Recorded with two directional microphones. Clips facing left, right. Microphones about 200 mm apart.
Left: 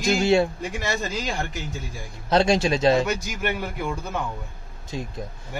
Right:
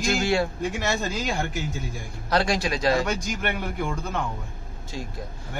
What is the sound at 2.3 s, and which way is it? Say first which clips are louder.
Speech: left 4 dB; 25° left (ahead or behind).